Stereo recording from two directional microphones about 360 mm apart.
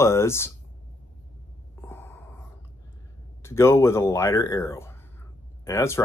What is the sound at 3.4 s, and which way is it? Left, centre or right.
Speech, centre.